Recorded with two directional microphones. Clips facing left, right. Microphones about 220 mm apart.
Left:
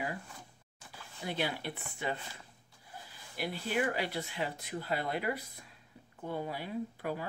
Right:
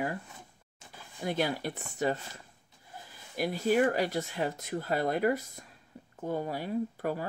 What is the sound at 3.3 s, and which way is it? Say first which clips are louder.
Speech: right 7 dB; 45° right (ahead or behind).